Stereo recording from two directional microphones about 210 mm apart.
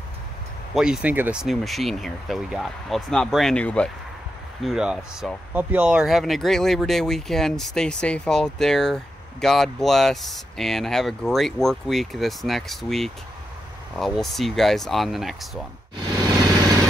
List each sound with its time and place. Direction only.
0.7 s speech: 5° right (ahead or behind)